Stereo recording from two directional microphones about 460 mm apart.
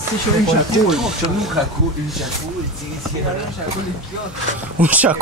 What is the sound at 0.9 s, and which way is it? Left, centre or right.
Speech, centre.